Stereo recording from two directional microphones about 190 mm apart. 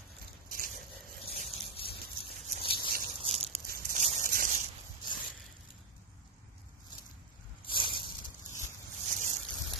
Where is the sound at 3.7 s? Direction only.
50° right (ahead or behind).